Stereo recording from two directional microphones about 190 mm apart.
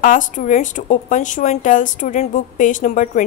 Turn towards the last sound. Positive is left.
turn(degrees=40)  # may be behind; listen again after turning